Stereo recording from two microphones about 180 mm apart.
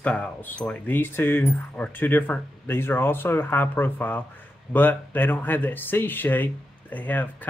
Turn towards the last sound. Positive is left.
turn(degrees=10)  # may be behind; listen again after turning